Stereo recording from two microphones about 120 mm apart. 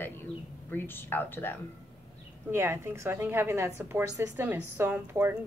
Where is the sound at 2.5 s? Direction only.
20° right (ahead or behind).